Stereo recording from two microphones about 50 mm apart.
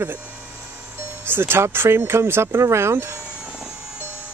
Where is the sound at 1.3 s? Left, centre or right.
Right.